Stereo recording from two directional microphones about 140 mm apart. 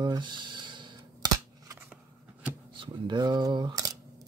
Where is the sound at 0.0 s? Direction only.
30° right (ahead or behind).